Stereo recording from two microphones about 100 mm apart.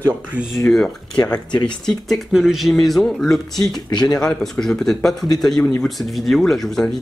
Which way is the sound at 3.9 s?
45° left (ahead or behind).